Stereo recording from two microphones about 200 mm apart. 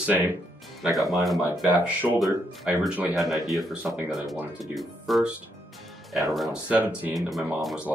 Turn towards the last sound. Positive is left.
turn(degrees=0)  # may be behind; listen again after turning